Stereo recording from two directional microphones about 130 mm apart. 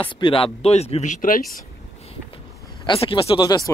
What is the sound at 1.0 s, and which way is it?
Speech, 85° left.